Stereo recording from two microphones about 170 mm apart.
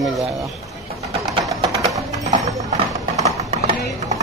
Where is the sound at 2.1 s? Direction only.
45° right (ahead or behind).